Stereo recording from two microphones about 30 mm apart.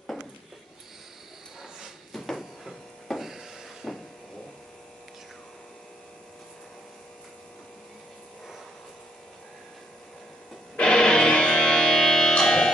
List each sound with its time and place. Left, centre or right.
2.1 s printer: centre
3.2 s a sound: centre
3.8 s vehicle: centre
10.8 s music: left